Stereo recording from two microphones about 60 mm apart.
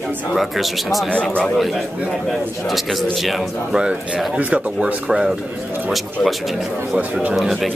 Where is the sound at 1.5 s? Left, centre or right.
Centre.